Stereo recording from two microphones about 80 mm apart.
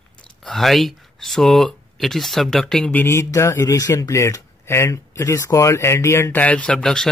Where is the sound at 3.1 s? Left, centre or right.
Left.